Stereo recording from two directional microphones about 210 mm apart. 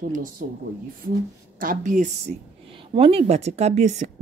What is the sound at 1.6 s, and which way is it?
Speech, 40° right (ahead or behind).